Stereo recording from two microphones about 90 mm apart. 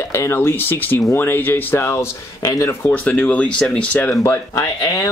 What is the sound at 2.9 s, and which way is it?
Speech, 15° left (ahead or behind).